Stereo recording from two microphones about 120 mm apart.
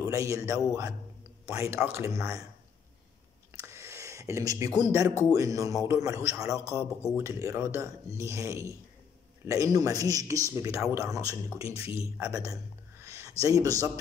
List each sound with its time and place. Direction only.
0.0 s a man's voice: 25° right (ahead or behind)
3.5 s a sound: 25° right (ahead or behind)
5.3 s speech: 30° right (ahead or behind)